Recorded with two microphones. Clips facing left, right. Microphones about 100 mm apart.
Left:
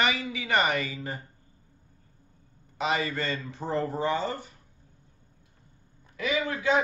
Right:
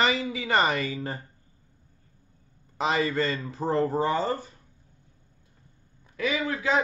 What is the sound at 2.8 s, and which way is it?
Speech, 30° right (ahead or behind).